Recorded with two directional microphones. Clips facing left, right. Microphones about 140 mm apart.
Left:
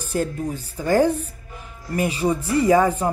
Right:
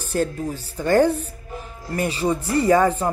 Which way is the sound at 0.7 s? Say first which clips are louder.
Right 1 dB; 10° left (ahead or behind).